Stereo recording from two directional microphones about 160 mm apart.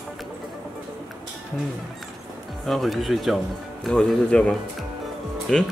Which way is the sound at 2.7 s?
Centre (ahead or behind).